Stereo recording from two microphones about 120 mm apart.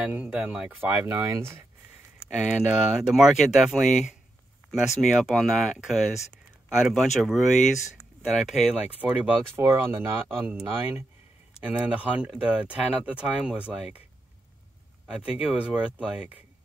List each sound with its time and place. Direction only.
0.0 s speech: 10° right (ahead or behind)
2.7 s speech: 5° right (ahead or behind)
9.6 s speech: 20° right (ahead or behind)
15.0 s speech: 10° right (ahead or behind)